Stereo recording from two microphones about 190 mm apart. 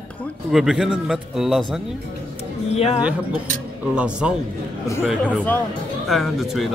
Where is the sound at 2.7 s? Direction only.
35° left (ahead or behind).